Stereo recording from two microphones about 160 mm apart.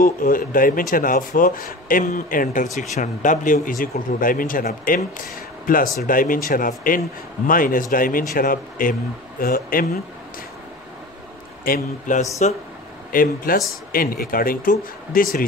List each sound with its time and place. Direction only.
0.0 s speech: 60° left (ahead or behind)
11.6 s speech: 55° left (ahead or behind)